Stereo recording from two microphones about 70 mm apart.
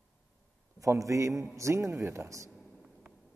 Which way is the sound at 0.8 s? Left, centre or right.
Right.